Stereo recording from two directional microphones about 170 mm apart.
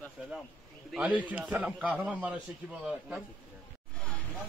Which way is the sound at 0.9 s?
5° right (ahead or behind).